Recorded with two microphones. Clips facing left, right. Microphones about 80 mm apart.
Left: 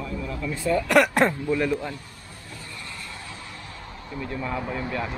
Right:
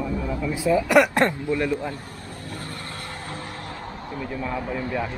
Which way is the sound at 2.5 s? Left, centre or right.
Right.